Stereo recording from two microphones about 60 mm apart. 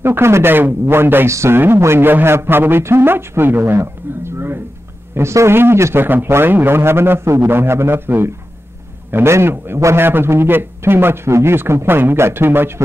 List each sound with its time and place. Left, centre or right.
0.0 s a man's voice: right